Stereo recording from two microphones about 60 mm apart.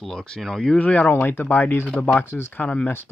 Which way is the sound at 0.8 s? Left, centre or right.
Left.